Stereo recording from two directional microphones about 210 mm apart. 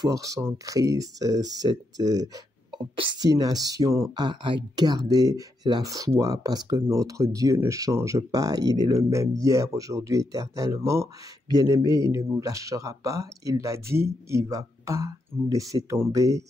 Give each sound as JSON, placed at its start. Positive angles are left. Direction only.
{"t": 0.0, "sound": "speech", "side_deg": -15}